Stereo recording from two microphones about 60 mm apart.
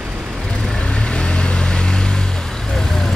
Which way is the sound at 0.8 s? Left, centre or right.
Centre.